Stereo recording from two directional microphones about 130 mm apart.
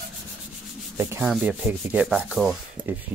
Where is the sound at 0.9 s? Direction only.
20° right (ahead or behind).